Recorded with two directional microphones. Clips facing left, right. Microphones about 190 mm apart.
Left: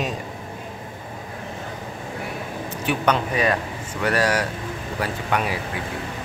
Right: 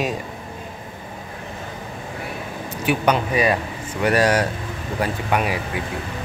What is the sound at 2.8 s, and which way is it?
Speech, 10° right (ahead or behind).